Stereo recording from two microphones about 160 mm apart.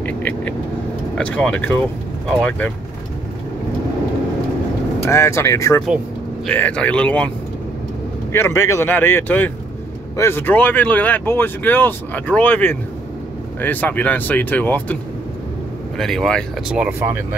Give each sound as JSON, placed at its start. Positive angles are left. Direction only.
{"t": 0.0, "sound": "vehicle", "side_deg": 10}
{"t": 1.1, "sound": "speech", "side_deg": 5}
{"t": 5.0, "sound": "speech", "side_deg": 15}
{"t": 8.3, "sound": "speech", "side_deg": 15}
{"t": 16.0, "sound": "speech", "side_deg": 5}